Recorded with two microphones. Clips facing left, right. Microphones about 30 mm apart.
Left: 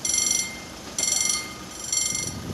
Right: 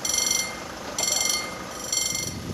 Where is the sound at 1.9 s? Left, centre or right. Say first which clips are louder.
Even; centre.